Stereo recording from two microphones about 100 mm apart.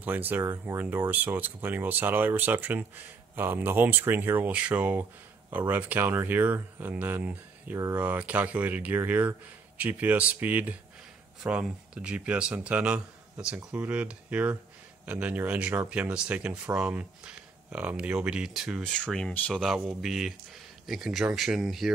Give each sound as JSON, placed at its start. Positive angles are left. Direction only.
{"t": 0.0, "sound": "speech", "side_deg": -20}
{"t": 18.8, "sound": "speech", "side_deg": 10}
{"t": 20.0, "sound": "speech", "side_deg": 0}